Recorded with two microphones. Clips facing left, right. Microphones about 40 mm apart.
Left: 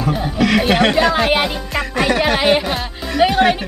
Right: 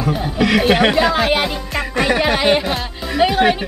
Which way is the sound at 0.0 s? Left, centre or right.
Centre.